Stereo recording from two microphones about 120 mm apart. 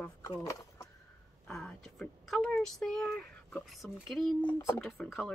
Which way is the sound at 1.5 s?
5° left (ahead or behind).